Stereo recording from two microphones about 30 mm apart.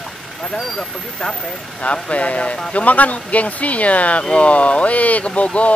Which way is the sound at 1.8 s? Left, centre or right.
Left.